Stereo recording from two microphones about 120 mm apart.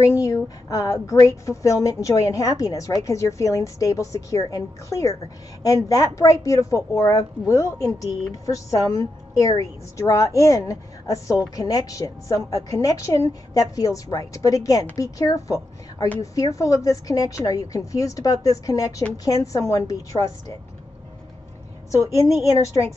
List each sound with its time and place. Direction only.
0.2 s a woman's voice: 25° left (ahead or behind)
22.3 s a woman's voice: 25° left (ahead or behind)